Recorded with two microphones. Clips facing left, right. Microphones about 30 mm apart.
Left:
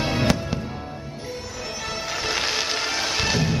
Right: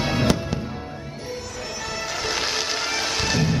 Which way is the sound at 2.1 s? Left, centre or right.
Centre.